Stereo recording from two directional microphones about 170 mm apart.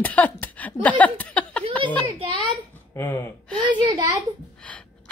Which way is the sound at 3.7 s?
25° right (ahead or behind).